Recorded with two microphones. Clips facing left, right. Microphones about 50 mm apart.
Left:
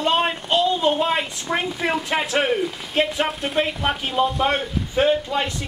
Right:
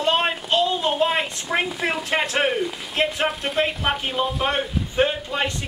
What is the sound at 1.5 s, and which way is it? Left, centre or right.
A man's voice, centre.